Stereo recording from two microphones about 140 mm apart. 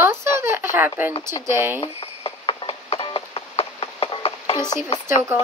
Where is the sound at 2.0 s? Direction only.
45° left (ahead or behind).